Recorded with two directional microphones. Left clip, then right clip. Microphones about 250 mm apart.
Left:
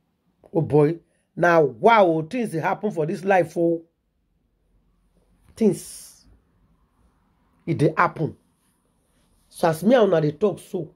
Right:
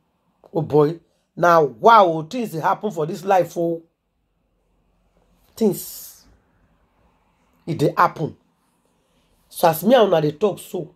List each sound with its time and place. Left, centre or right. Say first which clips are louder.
0.4 s speech: right 2 dB; left
5.5 s speech: right 1 dB; left
7.6 s speech: right 3 dB; left
9.5 s speech: right 4 dB; left